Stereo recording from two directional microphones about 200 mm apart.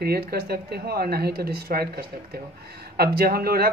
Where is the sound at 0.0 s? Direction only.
50° right (ahead or behind).